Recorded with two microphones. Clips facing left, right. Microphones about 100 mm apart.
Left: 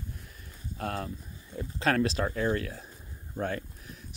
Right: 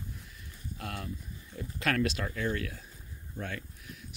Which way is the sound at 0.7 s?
35° left (ahead or behind).